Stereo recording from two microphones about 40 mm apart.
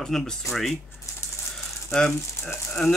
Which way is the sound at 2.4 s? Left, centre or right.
Left.